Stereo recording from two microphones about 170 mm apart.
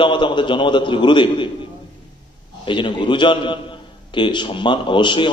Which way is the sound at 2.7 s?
30° left (ahead or behind).